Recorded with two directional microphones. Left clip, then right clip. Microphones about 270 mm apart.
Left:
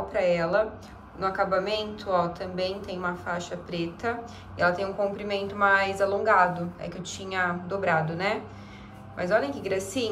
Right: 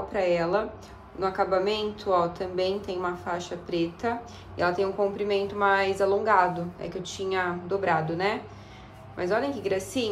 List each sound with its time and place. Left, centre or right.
0.2 s a woman's voice: right